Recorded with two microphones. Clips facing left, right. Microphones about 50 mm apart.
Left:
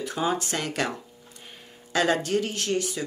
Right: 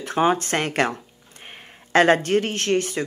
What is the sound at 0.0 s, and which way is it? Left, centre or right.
Speech, right.